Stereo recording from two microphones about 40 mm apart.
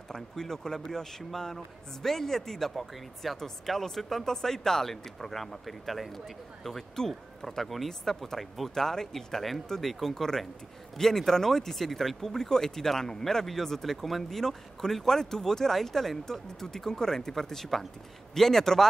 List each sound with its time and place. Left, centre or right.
0.1 s speech: centre